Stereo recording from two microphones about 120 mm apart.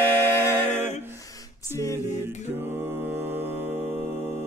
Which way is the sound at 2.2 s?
20° right (ahead or behind).